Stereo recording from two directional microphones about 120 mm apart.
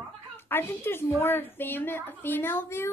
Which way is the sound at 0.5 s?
20° left (ahead or behind).